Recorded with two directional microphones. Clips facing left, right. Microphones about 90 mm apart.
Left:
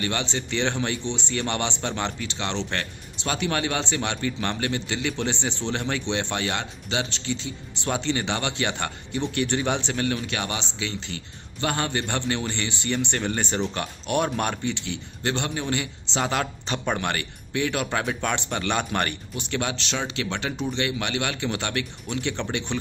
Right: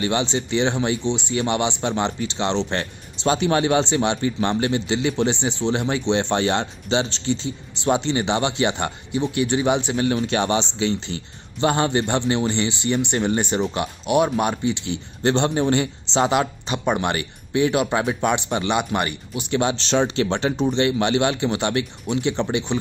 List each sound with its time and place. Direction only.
0.0 s a man's voice: 20° right (ahead or behind)
10.0 s a man's voice: 30° right (ahead or behind); by 19.6 s 10° right (ahead or behind)
19.6 s a man's voice: 25° right (ahead or behind)